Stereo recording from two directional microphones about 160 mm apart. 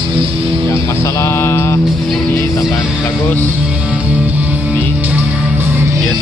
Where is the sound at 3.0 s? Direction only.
15° left (ahead or behind).